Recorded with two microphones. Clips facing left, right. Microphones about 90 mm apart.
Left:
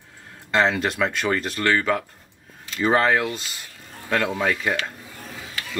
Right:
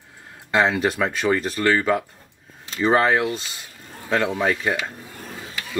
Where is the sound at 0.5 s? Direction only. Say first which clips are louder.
Right 1 dB; 5° right (ahead or behind).